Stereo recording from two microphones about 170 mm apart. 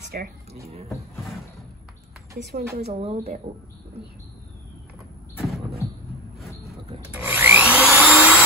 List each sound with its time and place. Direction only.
0.1 s speech: 65° right (ahead or behind)
2.8 s speech: 35° right (ahead or behind)
5.3 s vehicle: centre (ahead or behind)
7.1 s wood: 10° right (ahead or behind)